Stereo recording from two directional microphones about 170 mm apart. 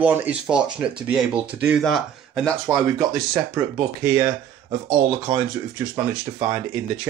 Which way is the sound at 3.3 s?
15° right (ahead or behind).